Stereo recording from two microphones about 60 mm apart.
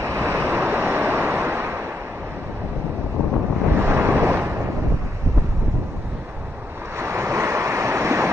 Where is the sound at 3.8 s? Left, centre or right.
Right.